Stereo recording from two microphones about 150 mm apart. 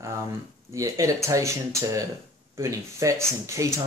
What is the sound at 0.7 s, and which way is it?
Speech, 20° right (ahead or behind).